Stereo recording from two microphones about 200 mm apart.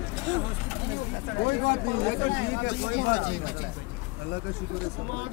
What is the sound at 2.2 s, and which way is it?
Speech, 60° left (ahead or behind).